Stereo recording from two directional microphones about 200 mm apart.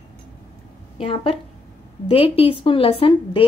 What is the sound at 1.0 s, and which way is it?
A woman's voice, 25° left (ahead or behind).